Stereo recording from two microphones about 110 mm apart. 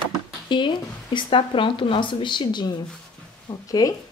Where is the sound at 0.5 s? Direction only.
45° left (ahead or behind).